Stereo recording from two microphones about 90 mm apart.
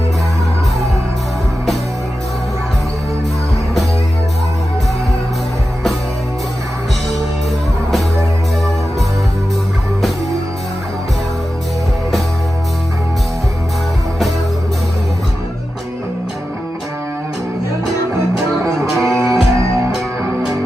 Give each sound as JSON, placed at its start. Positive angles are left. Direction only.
{"t": 18.6, "sound": "music", "side_deg": 5}
{"t": 19.1, "sound": "music", "side_deg": -35}